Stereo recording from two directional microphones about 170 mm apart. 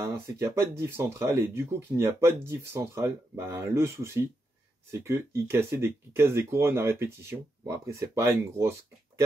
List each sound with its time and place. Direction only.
0.0 s speech: 15° right (ahead or behind)